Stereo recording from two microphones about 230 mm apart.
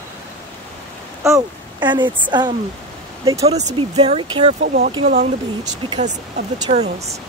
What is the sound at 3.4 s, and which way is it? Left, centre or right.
Speech, right.